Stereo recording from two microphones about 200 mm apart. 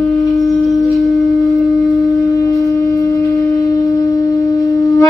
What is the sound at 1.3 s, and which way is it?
Wind instrument, centre (ahead or behind).